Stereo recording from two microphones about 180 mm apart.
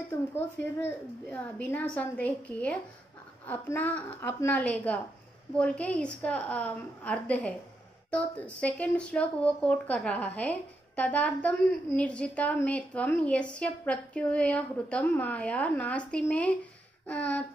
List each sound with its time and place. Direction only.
0.1 s speech: 15° left (ahead or behind)